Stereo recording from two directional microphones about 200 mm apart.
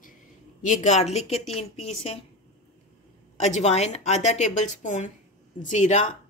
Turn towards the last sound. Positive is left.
turn(degrees=35)  # may be behind; listen again after turning